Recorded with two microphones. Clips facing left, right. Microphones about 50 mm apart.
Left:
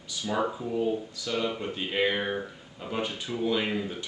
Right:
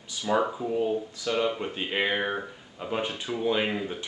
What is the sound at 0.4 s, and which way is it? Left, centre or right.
Speech, centre.